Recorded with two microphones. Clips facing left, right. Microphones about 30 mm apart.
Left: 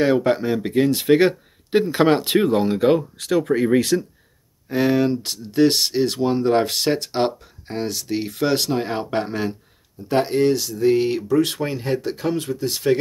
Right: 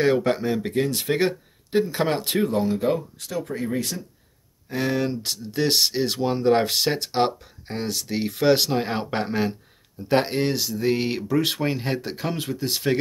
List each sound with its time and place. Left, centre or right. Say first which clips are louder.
0.0 s speech: left 3 dB; centre
0.7 s speech: left 9 dB; left
3.3 s speech: left 9 dB; left
4.6 s speech: left 6 dB; centre
5.2 s speech: left 7 dB; centre
10.0 s speech: left 3 dB; right; by 11.6 s centre
11.6 s speech: left 2 dB; centre